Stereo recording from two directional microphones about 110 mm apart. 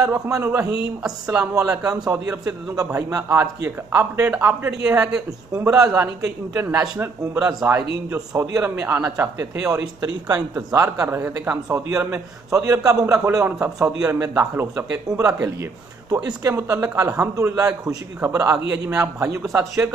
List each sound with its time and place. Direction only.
0.0 s a man's voice: 10° right (ahead or behind)
0.4 s a man's voice: 25° right (ahead or behind)
1.9 s a man's voice: 35° right (ahead or behind); by 5.1 s 15° right (ahead or behind)
5.6 s a man's voice: 25° right (ahead or behind)